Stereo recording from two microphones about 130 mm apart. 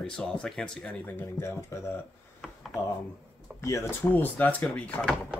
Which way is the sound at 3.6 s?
20° left (ahead or behind).